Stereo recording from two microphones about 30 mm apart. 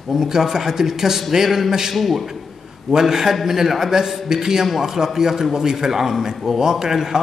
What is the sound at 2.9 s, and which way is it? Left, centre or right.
A man's voice, centre.